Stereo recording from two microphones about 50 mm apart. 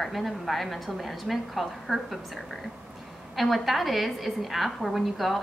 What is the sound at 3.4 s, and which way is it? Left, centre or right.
A woman's voice, centre.